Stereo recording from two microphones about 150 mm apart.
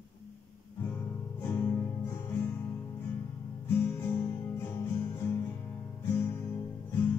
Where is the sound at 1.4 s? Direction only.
15° left (ahead or behind).